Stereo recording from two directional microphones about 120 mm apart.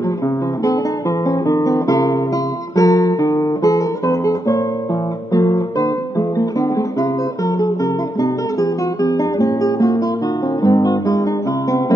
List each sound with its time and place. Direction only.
1.5 s guitar: 30° left (ahead or behind)
8.2 s guitar: 30° left (ahead or behind)